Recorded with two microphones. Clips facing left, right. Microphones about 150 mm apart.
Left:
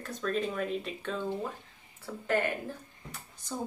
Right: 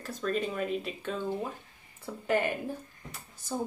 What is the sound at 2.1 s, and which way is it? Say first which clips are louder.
Speech: right 1 dB; 15° right (ahead or behind).